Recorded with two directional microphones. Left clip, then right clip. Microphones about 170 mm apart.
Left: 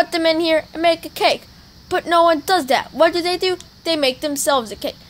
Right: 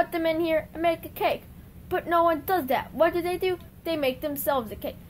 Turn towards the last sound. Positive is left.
turn(degrees=50)  # may be behind; listen again after turning